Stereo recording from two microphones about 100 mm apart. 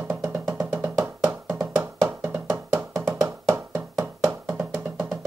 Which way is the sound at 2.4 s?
30° right (ahead or behind).